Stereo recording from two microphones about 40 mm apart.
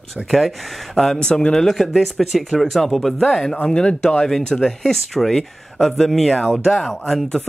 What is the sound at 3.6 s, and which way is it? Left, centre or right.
Speech, left.